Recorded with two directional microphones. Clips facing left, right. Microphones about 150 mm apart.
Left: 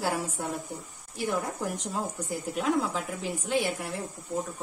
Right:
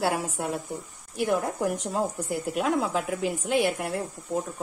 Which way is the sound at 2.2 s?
60° right (ahead or behind).